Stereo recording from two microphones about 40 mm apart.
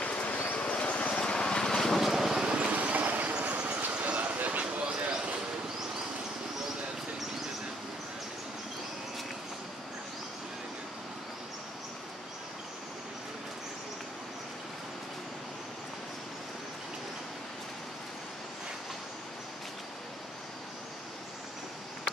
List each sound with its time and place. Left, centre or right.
0.0 s a sound: left
0.5 s vehicle: left
1.8 s vehicle: centre
2.0 s vehicle: centre
2.4 s vehicle: right
2.7 s train: right
3.9 s a sound: right
4.2 s clip-clop: right